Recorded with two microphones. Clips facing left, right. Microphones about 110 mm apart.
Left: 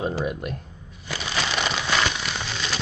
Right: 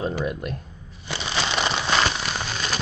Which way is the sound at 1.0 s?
30° right (ahead or behind).